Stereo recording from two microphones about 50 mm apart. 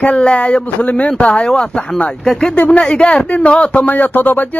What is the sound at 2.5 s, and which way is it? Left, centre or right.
Speech, left.